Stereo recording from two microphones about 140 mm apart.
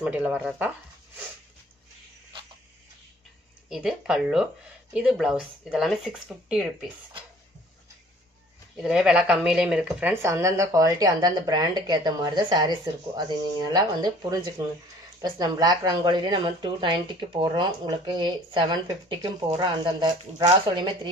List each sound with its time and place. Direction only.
0.0 s speech: 10° right (ahead or behind)
3.6 s speech: 5° right (ahead or behind)
8.7 s speech: 5° right (ahead or behind)
10.2 s speech: 20° right (ahead or behind)